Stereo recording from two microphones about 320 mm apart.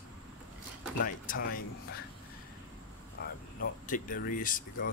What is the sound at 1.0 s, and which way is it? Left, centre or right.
Speech, left.